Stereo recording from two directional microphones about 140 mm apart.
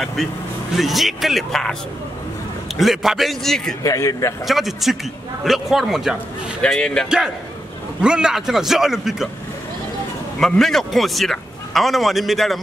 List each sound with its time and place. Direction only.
0.0 s a man's voice: centre (ahead or behind)
2.8 s a man's voice: centre (ahead or behind)
3.8 s a man's voice: 25° left (ahead or behind)
4.5 s a man's voice: centre (ahead or behind)
8.0 s a man's voice: 5° right (ahead or behind)
10.4 s a man's voice: centre (ahead or behind)